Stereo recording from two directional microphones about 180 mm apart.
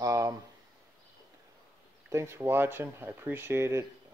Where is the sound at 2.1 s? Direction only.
15° right (ahead or behind).